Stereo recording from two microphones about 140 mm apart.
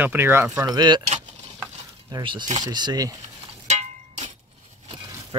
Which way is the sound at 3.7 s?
55° right (ahead or behind).